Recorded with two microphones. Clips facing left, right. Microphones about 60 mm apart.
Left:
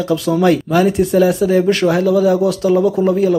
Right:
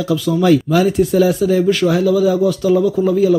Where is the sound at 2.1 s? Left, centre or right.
Left.